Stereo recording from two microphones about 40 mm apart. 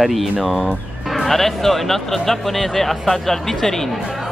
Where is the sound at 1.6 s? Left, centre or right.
Centre.